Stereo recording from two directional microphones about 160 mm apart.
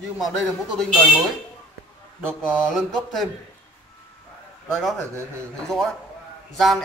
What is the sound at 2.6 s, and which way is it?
Speech, centre (ahead or behind).